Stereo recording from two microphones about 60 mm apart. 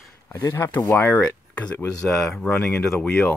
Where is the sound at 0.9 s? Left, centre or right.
Left.